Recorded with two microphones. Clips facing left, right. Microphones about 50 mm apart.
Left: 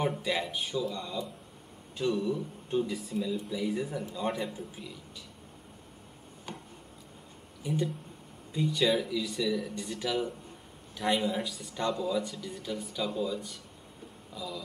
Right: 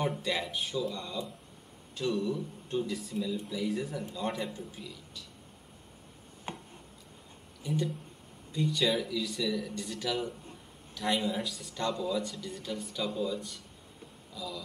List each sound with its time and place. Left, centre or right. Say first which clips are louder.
0.0 s a man's voice: left 2 dB; centre
6.5 s a sound: right 2 dB; right
8.5 s speech: left 2 dB; centre